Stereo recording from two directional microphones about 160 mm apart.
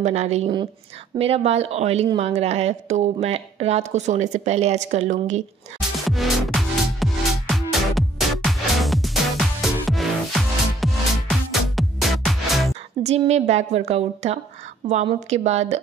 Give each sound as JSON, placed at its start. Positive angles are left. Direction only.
{"t": 0.0, "sound": "a woman's voice", "side_deg": -45}
{"t": 5.8, "sound": "music", "side_deg": 0}
{"t": 13.0, "sound": "a woman's voice", "side_deg": -45}